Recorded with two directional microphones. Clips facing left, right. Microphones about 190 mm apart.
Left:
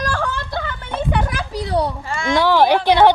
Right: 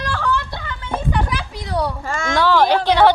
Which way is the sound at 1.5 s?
30° left (ahead or behind).